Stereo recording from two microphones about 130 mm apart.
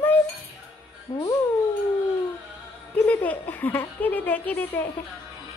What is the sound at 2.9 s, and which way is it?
A woman's voice, 10° left (ahead or behind).